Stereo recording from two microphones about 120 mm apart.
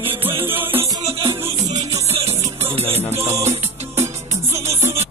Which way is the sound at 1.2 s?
55° right (ahead or behind).